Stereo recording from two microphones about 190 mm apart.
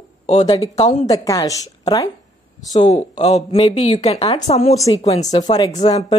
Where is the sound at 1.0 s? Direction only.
15° left (ahead or behind).